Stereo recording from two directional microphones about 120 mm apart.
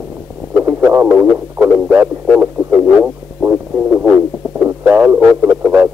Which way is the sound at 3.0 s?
10° right (ahead or behind).